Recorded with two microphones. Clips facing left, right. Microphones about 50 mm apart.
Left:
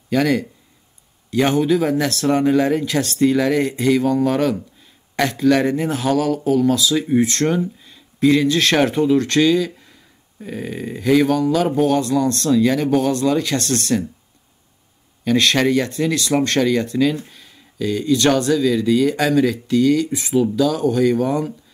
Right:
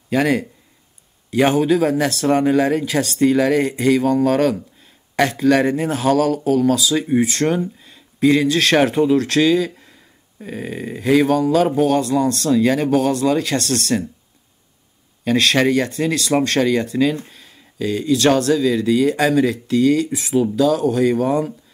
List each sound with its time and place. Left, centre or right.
0.1 s speech: right
12.9 s speech: centre
15.2 s speech: centre
17.3 s a sound: centre
18.0 s speech: centre